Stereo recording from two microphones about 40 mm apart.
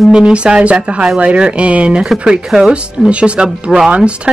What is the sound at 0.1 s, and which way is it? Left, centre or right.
Speech, right.